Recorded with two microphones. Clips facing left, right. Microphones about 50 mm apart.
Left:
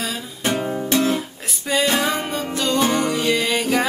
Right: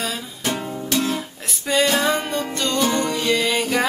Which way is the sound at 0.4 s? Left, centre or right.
Left.